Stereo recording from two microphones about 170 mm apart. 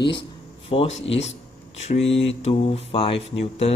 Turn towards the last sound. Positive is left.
turn(degrees=35)  # may be behind; listen again after turning